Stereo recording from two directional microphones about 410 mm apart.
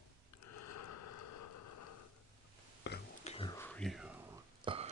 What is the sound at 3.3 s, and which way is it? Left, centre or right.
Whispering, centre.